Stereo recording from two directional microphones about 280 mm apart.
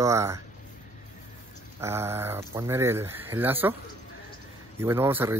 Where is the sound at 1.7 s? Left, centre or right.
Centre.